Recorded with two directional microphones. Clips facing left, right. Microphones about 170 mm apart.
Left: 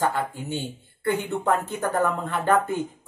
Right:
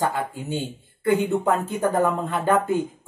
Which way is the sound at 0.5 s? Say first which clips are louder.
Right 2 dB; 10° right (ahead or behind).